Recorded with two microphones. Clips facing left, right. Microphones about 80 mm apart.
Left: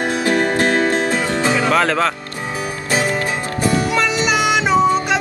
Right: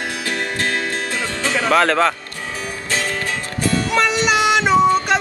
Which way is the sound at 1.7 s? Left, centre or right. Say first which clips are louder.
Right 4 dB; centre.